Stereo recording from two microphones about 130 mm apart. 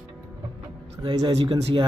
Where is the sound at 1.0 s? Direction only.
35° right (ahead or behind).